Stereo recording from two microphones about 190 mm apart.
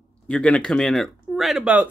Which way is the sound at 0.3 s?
5° left (ahead or behind).